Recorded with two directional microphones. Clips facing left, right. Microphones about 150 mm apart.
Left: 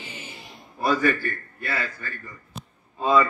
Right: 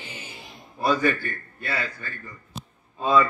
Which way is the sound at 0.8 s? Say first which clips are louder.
Even; 20° right (ahead or behind).